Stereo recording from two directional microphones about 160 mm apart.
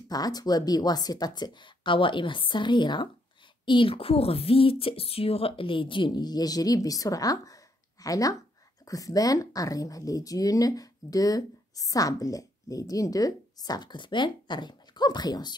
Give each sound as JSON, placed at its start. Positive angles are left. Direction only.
{"t": 0.1, "sound": "a woman's voice", "side_deg": 25}